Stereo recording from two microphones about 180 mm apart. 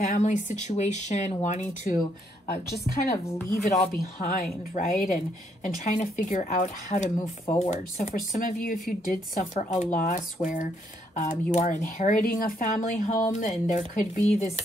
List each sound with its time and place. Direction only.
0.0 s speech: 45° left (ahead or behind)
3.9 s speech: 55° left (ahead or behind)